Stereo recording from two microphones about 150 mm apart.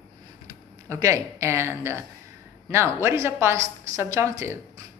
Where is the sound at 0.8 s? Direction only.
20° right (ahead or behind).